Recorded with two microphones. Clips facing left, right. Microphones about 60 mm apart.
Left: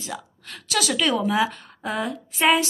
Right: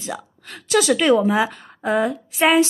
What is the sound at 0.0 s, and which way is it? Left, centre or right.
Speech, right.